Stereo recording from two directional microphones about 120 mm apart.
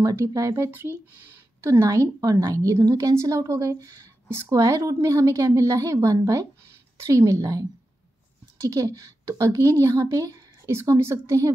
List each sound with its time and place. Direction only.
0.0 s a woman's voice: 25° right (ahead or behind)
0.7 s a woman's voice: 15° right (ahead or behind)